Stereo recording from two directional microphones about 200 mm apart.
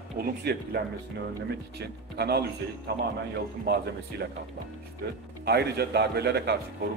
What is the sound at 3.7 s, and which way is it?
A man's voice, 55° right (ahead or behind).